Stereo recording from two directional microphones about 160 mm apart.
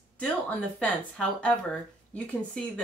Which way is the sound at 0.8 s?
5° left (ahead or behind).